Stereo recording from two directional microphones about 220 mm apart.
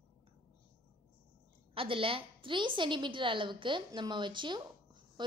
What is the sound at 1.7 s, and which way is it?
A woman's voice, 25° right (ahead or behind).